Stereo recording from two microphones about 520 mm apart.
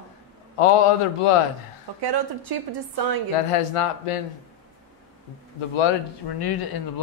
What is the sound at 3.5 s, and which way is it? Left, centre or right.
Speech, left.